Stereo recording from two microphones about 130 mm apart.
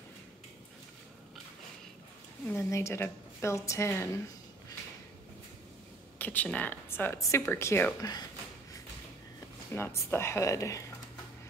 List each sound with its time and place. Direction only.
2.4 s a woman's voice: 20° left (ahead or behind)
6.1 s a woman's voice: 15° left (ahead or behind)
8.0 s speech: 30° left (ahead or behind)
9.7 s a woman's voice: 20° left (ahead or behind)